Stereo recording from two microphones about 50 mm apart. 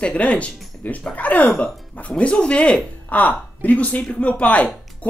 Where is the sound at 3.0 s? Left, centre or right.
Left.